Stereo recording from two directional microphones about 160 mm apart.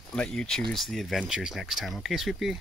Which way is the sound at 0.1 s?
5° left (ahead or behind).